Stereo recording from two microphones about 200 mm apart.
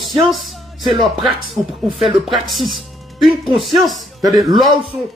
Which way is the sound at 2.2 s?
Centre (ahead or behind).